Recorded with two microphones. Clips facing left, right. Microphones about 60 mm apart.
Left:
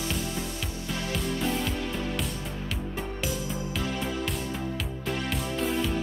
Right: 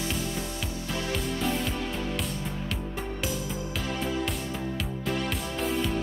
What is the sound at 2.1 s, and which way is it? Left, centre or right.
Music, centre.